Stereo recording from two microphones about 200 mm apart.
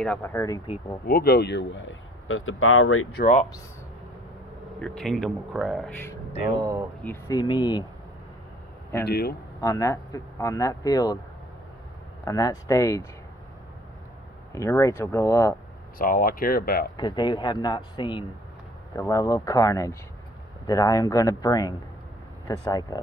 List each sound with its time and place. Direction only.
0.0 s speech: 10° left (ahead or behind)
1.0 s speech: 50° left (ahead or behind); by 3.1 s 90° left
4.7 s speech: 5° left (ahead or behind)
7.1 s speech: 20° left (ahead or behind)
9.0 s speech: 55° left (ahead or behind)
9.6 s speech: 15° left (ahead or behind)
12.3 s speech: 20° left (ahead or behind)
14.5 s speech: 15° left (ahead or behind)
16.0 s speech: 45° left (ahead or behind)
16.9 s speech: 25° left (ahead or behind)